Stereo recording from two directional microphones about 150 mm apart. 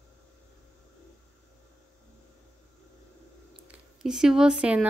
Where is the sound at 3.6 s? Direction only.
5° right (ahead or behind).